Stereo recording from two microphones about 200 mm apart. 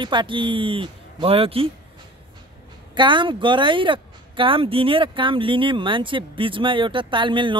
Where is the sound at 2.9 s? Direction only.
25° right (ahead or behind).